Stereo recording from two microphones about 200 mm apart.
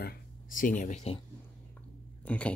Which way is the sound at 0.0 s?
40° left (ahead or behind).